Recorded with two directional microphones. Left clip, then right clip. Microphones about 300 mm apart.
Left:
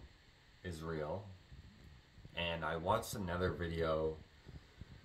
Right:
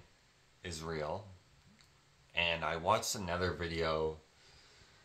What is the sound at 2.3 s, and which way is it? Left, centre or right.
Speech, centre.